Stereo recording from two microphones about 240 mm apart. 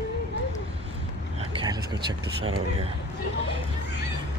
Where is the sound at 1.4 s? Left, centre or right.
Centre.